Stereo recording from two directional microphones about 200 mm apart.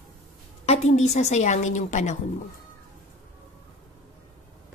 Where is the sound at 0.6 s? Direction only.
35° left (ahead or behind).